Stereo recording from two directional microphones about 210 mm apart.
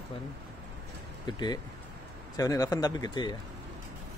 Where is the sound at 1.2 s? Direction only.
20° left (ahead or behind).